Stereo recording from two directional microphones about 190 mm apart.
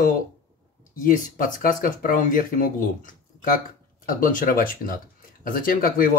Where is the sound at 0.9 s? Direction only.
45° left (ahead or behind).